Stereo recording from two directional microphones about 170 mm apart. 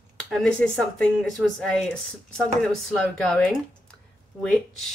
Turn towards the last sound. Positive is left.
turn(degrees=5)  # may be behind; listen again after turning